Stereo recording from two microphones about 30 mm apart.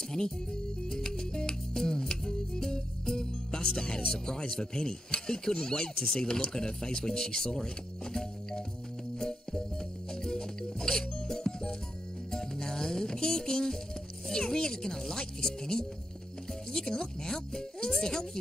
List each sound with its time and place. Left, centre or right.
0.1 s music: left
4.1 s speech: left
10.2 s music: centre
14.3 s speech: left